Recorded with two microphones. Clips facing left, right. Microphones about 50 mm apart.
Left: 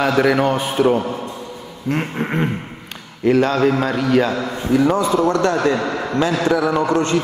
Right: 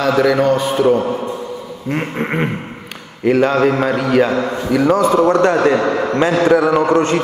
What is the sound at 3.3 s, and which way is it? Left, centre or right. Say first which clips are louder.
Speech: right 2 dB; right.